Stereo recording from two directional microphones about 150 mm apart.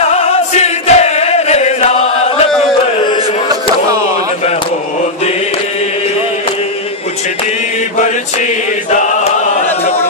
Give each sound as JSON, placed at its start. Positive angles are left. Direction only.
{"t": 0.0, "sound": "chant", "side_deg": 45}